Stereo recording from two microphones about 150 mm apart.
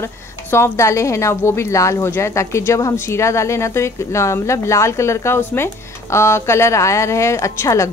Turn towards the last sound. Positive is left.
turn(degrees=20)  # may be behind; listen again after turning